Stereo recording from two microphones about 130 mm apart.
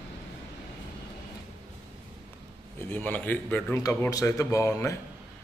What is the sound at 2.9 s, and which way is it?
A man's voice, 15° left (ahead or behind).